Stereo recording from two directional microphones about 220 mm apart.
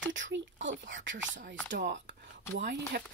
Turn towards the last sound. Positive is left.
turn(degrees=-55)  # may be behind; listen again after turning